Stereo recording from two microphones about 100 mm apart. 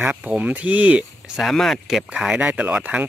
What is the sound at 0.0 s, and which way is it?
Speech, 15° right (ahead or behind).